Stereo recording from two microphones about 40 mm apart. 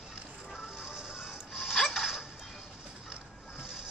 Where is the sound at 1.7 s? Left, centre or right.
Centre.